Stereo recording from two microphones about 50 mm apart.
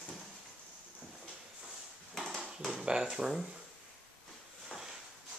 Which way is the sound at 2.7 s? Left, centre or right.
Centre.